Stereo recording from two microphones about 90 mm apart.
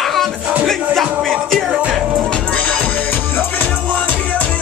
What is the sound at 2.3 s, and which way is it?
Music, 10° left (ahead or behind).